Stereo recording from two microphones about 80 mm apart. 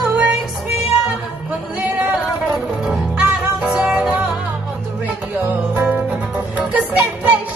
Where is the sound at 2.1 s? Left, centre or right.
Centre.